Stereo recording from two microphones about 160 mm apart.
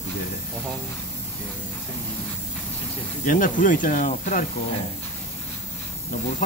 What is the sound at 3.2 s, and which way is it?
Speech, 55° left (ahead or behind).